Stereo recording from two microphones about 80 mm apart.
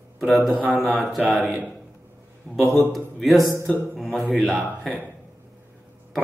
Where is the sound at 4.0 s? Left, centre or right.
Centre.